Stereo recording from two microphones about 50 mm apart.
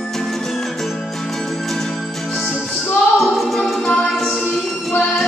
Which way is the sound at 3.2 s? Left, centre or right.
Centre.